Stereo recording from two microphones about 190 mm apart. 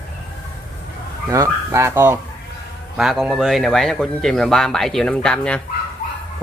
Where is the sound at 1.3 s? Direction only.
15° right (ahead or behind).